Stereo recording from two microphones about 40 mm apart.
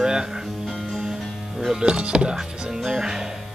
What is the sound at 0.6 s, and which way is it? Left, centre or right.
Music, centre.